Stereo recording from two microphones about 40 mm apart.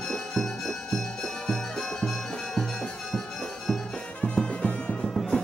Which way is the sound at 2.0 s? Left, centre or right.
Centre.